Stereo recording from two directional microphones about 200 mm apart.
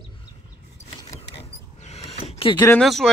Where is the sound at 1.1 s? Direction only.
15° left (ahead or behind).